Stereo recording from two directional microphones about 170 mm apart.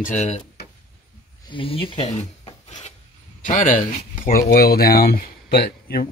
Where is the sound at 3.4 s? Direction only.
50° left (ahead or behind).